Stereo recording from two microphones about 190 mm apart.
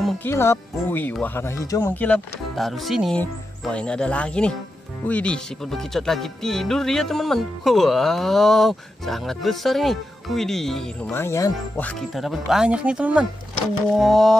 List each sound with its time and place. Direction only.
0.2 s speech: 15° left (ahead or behind)
11.1 s speech: 15° left (ahead or behind)